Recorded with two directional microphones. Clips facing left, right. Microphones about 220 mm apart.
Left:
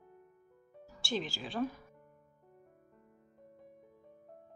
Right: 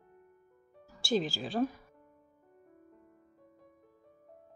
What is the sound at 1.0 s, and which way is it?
Speech, 35° right (ahead or behind).